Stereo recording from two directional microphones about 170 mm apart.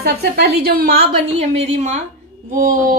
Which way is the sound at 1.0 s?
35° right (ahead or behind).